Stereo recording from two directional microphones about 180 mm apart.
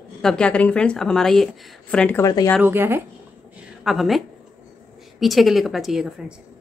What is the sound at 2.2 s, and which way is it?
Speech, 20° left (ahead or behind).